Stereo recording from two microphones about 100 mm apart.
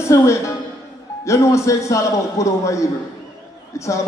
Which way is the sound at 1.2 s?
30° left (ahead or behind).